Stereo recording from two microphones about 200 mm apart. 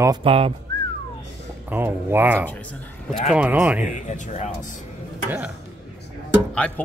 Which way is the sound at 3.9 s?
35° left (ahead or behind).